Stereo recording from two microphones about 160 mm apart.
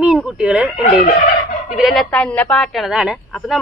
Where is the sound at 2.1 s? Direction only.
10° left (ahead or behind).